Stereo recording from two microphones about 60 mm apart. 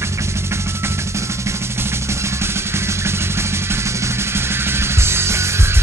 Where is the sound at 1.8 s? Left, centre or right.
Right.